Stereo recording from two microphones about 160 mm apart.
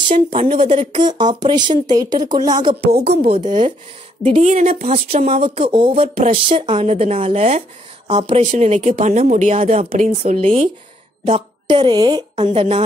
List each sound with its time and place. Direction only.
0.3 s speech: 30° right (ahead or behind)
2.8 s a woman's voice: 85° right
3.3 s speech: 30° right (ahead or behind)
4.2 s a woman's voice: 45° right (ahead or behind); by 12.4 s 30° right (ahead or behind)
12.5 s speech: 40° right (ahead or behind)